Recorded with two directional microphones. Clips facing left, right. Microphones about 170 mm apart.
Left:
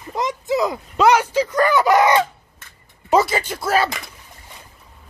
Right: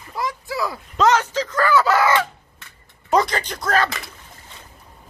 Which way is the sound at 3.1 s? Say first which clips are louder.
Left 2 dB; 5° left (ahead or behind).